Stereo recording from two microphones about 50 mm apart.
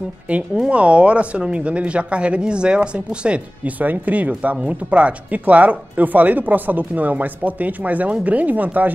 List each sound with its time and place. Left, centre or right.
0.7 s speech: right
3.8 s speech: right